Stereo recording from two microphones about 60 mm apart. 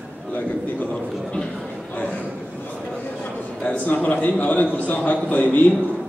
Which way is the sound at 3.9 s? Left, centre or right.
Left.